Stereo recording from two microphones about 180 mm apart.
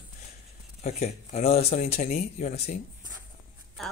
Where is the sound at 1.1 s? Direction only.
35° left (ahead or behind).